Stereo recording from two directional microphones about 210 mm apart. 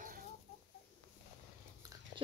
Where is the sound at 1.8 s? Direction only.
15° right (ahead or behind).